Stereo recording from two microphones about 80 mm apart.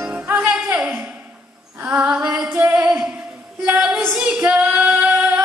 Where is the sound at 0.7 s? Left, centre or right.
Right.